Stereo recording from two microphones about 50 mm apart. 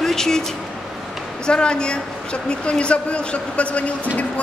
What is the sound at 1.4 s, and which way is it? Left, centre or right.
Speech, centre.